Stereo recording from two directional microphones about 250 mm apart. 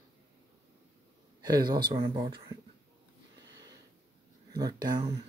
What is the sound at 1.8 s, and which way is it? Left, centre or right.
Speech, centre.